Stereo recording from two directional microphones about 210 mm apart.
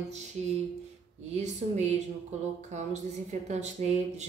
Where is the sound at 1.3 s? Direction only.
35° right (ahead or behind).